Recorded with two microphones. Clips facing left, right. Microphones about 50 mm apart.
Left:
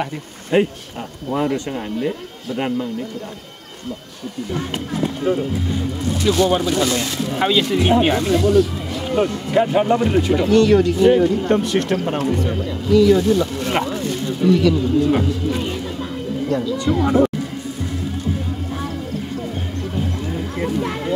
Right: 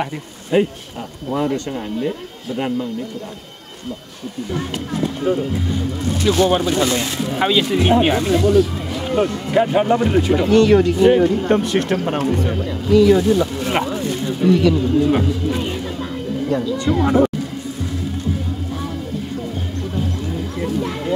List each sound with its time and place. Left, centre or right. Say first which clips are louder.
0.5 s speech: even; left
6.0 s speech: right 1 dB; right; by 10.5 s centre
10.5 s speech: right 1 dB; right
12.8 s speech: right 1 dB; right
13.2 s speech: right 1 dB; centre
16.7 s speech: right 1 dB; right